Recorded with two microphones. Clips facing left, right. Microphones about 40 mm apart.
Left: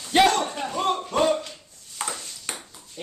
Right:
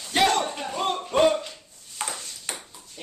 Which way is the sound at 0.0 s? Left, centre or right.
Centre.